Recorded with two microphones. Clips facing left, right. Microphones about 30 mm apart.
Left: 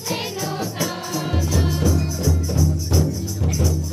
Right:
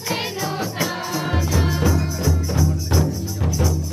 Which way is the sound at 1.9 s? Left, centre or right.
Right.